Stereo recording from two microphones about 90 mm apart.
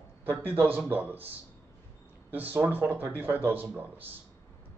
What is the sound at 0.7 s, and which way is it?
Speech, 20° right (ahead or behind).